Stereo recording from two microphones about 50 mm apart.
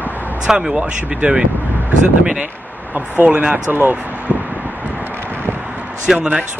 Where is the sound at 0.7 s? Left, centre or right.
Right.